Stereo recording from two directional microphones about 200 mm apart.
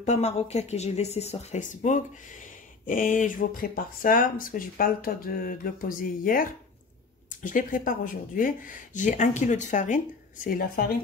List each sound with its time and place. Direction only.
0.0 s speech: 35° left (ahead or behind)